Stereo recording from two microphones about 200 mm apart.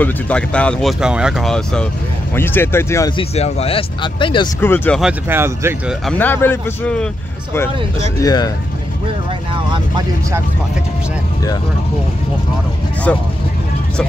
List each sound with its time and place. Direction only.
0.0 s speech: 5° left (ahead or behind)
3.2 s speech: 30° left (ahead or behind)
4.6 s speech: 10° left (ahead or behind)
5.0 s speech: 10° right (ahead or behind)
6.0 s speech: 10° left (ahead or behind)
8.2 s speech: 20° left (ahead or behind)
9.5 s speech: 25° right (ahead or behind)
13.1 s speech: 5° left (ahead or behind)